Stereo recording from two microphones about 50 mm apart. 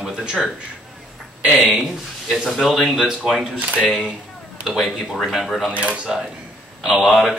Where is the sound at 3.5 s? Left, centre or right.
Right.